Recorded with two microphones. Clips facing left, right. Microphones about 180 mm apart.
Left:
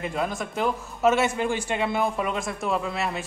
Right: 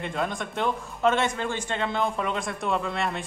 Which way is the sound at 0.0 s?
5° left (ahead or behind).